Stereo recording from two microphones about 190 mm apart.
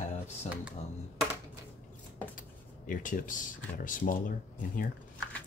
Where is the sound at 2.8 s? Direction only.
45° left (ahead or behind).